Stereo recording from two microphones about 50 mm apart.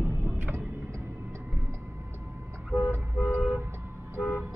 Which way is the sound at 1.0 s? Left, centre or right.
Right.